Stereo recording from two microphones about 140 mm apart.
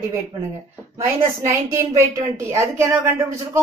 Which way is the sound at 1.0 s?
20° right (ahead or behind).